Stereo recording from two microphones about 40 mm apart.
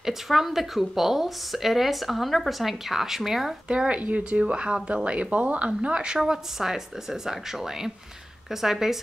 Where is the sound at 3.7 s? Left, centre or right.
Right.